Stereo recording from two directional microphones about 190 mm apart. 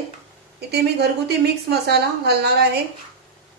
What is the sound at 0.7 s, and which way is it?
A woman's voice, 60° right (ahead or behind).